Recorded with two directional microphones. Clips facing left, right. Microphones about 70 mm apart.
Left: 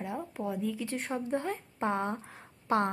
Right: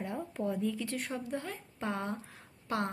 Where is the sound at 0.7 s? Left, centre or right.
Left.